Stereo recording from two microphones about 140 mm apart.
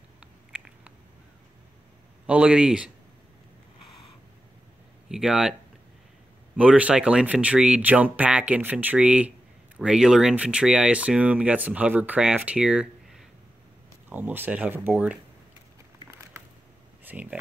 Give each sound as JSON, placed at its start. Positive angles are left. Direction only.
{"t": 2.2, "sound": "speech", "side_deg": -5}
{"t": 5.0, "sound": "speech", "side_deg": -5}
{"t": 16.0, "sound": "a sound", "side_deg": -20}
{"t": 17.0, "sound": "speech", "side_deg": -10}